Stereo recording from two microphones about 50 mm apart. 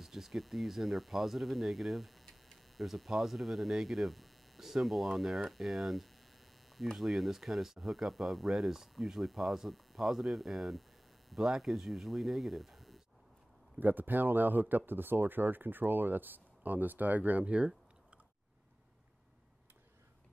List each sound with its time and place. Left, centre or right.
0.0 s speech: centre
13.7 s speech: right